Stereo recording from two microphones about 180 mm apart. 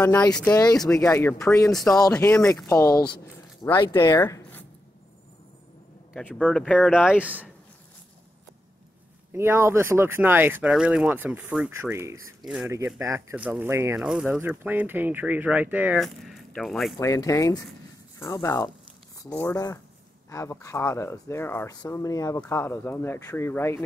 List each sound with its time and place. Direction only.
0.3 s speech: 5° left (ahead or behind)
0.6 s speech: 20° left (ahead or behind)
0.8 s speech: 5° left (ahead or behind)
1.7 s speech: centre (ahead or behind)
2.6 s speech: 15° left (ahead or behind)
6.1 s speech: 5° left (ahead or behind)
7.1 s speech: 10° right (ahead or behind)
9.3 s speech: 15° right (ahead or behind)
17.0 s speech: 20° left (ahead or behind)